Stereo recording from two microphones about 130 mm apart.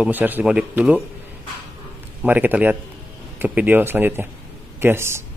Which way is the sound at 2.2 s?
15° right (ahead or behind).